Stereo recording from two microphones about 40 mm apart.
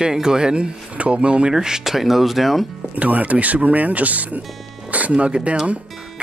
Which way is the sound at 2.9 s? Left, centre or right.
Right.